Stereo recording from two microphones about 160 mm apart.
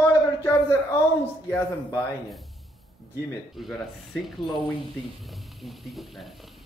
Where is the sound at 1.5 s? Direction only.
15° left (ahead or behind).